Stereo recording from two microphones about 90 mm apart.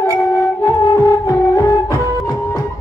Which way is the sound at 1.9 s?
25° left (ahead or behind).